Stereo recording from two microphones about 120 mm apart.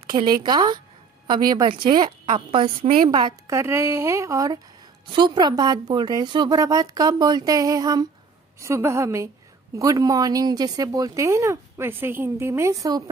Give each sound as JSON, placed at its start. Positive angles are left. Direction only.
{"t": 0.0, "sound": "speech", "side_deg": -40}
{"t": 3.4, "sound": "speech", "side_deg": -20}
{"t": 5.1, "sound": "speech", "side_deg": -40}